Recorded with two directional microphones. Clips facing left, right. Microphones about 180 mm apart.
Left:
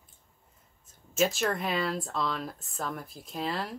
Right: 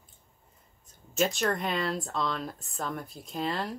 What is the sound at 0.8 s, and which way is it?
Speech, centre (ahead or behind).